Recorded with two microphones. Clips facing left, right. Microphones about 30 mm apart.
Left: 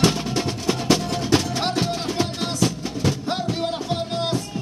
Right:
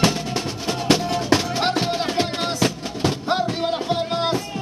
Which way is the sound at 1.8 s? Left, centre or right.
Right.